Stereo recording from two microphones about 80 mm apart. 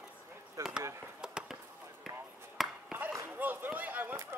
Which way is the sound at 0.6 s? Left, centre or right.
Right.